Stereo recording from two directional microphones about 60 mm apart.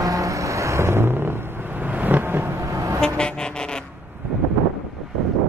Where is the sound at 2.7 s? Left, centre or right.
Right.